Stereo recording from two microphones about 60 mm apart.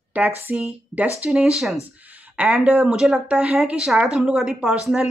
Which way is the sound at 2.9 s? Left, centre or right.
Centre.